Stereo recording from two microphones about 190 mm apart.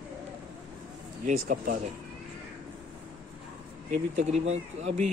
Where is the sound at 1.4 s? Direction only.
45° right (ahead or behind).